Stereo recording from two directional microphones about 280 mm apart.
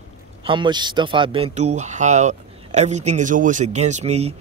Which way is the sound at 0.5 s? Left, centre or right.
Centre.